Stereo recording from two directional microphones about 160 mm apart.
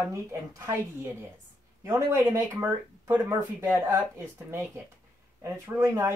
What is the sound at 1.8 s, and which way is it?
Speech, 15° right (ahead or behind).